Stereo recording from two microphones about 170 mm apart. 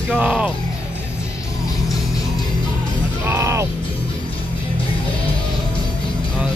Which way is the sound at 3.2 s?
15° right (ahead or behind).